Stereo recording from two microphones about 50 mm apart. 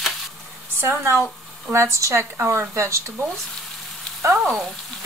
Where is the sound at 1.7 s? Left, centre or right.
Right.